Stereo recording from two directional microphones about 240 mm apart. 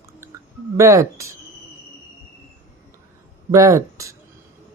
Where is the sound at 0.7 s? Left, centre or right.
Centre.